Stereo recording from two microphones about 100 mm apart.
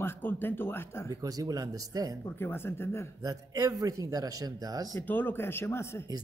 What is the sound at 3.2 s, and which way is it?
A man's voice, 35° right (ahead or behind).